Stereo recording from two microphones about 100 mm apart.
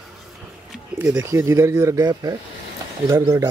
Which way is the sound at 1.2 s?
30° right (ahead or behind).